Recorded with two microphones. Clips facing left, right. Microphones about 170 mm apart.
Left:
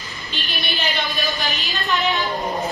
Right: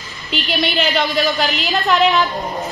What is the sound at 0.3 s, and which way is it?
A woman's voice, 90° right.